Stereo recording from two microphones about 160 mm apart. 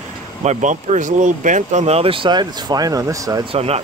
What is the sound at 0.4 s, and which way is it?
Speech, 50° right (ahead or behind).